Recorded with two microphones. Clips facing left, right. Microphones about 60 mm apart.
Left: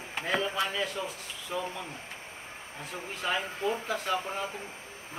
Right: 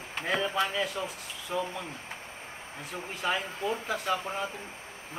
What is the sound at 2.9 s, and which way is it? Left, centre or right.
Speech, centre.